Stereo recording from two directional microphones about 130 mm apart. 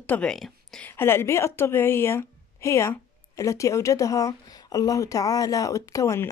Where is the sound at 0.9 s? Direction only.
20° left (ahead or behind).